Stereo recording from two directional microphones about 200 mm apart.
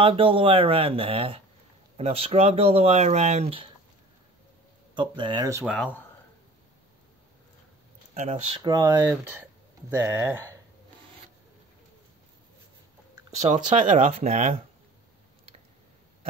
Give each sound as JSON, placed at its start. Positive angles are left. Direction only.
{"t": 0.0, "sound": "speech", "side_deg": -25}
{"t": 4.9, "sound": "speech", "side_deg": -25}
{"t": 5.8, "sound": "speech", "side_deg": 10}
{"t": 8.1, "sound": "speech", "side_deg": -30}
{"t": 8.6, "sound": "speech", "side_deg": -15}
{"t": 13.4, "sound": "speech", "side_deg": -35}